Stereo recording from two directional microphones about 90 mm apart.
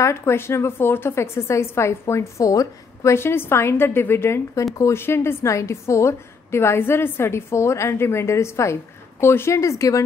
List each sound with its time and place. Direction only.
0.0 s a woman's voice: 30° left (ahead or behind)